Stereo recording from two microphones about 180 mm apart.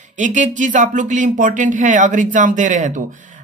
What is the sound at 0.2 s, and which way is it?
Speech, 45° right (ahead or behind).